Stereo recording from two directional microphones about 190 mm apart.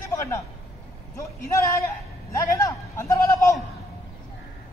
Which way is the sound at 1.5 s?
15° left (ahead or behind).